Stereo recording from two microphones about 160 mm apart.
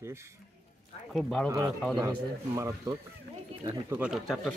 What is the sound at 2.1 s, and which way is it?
Speech, 20° right (ahead or behind).